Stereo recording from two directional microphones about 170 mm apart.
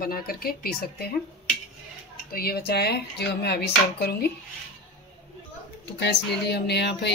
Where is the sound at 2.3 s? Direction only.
65° left (ahead or behind).